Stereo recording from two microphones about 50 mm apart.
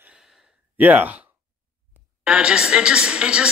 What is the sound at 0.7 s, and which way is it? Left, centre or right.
Speech, right.